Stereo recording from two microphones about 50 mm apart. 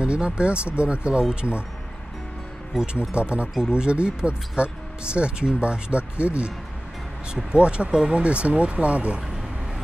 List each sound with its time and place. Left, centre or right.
0.0 s speech: centre
2.7 s speech: centre